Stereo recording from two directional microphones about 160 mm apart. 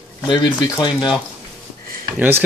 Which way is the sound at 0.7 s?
30° left (ahead or behind).